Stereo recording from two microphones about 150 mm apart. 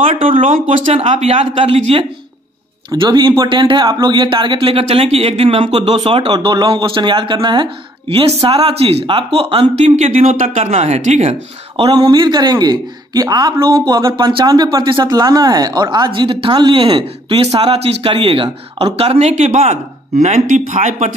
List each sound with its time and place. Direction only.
0.2 s speech: 40° right (ahead or behind)
0.5 s speech: 60° right (ahead or behind)
1.0 s speech: 40° right (ahead or behind)
2.9 s speech: 30° right (ahead or behind); by 10.4 s 60° right (ahead or behind)
10.4 s speech: 45° right (ahead or behind)
11.9 s a man's voice: 25° right (ahead or behind); by 21.1 s 55° right (ahead or behind)